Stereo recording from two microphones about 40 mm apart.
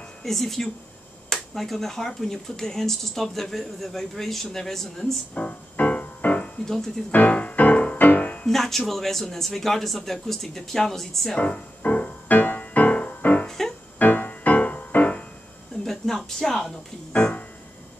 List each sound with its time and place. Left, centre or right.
0.2 s speech: centre
5.3 s music: left
8.5 s speech: centre
11.3 s music: left
12.3 s music: left
13.5 s music: centre
13.9 s music: left
15.8 s a sound: centre
16.3 s speech: centre
17.1 s keyboard: left